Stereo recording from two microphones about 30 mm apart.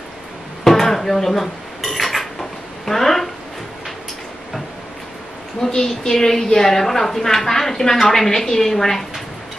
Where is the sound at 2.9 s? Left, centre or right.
Centre.